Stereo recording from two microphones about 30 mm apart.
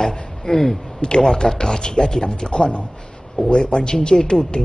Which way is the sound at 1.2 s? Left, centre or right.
Centre.